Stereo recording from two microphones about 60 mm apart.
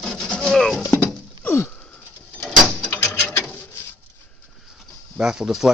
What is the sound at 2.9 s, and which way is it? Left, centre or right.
Patter, left.